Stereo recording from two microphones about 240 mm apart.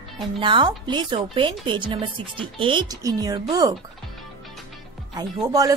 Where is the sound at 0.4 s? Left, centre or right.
Centre.